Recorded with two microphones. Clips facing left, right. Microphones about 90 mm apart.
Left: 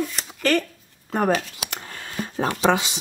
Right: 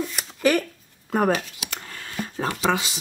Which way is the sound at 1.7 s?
20° left (ahead or behind).